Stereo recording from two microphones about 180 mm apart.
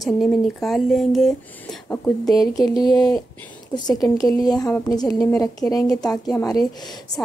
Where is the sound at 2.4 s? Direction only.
20° left (ahead or behind).